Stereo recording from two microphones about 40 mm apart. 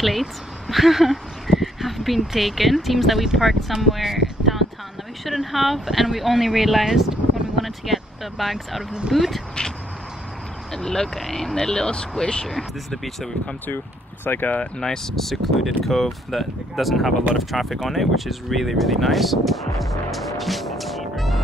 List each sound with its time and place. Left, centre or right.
0.0 s speech: centre
3.8 s a sound: centre
5.3 s speech: centre
10.7 s speech: centre
12.4 s speech: centre
14.2 s speech: left
14.8 s speech: centre